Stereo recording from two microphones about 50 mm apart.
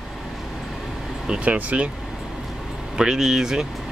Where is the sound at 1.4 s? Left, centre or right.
Right.